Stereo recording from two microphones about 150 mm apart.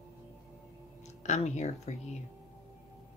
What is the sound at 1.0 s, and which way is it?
Speech, 50° left (ahead or behind).